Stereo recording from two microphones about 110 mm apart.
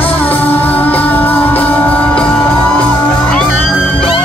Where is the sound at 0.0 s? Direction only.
15° left (ahead or behind).